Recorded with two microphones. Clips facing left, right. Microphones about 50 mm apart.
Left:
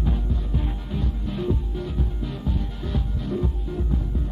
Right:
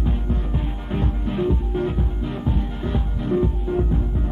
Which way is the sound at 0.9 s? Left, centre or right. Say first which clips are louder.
Right 6 dB; right.